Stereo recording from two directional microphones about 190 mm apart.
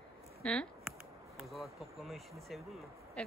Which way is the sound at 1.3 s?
Centre (ahead or behind).